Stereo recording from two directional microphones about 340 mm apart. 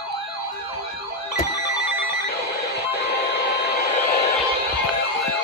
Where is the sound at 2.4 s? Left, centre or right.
Left.